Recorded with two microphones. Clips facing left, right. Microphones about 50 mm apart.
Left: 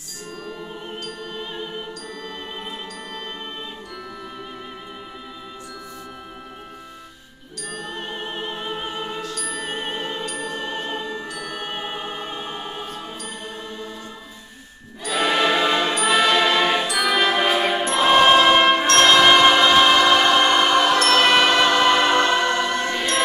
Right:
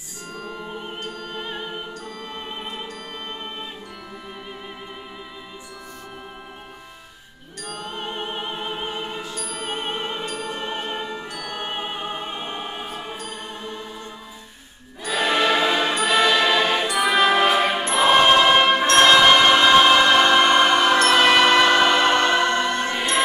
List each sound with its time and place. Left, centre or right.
0.5 s music: centre
7.6 s music: right
9.5 s opera: centre
10.2 s music: right
11.3 s music: centre
15.0 s music: centre
17.9 s a sound: centre
19.0 s train: centre
19.4 s a sound: centre
20.0 s train: centre
20.4 s music: centre
22.2 s choir: centre
22.5 s choir: right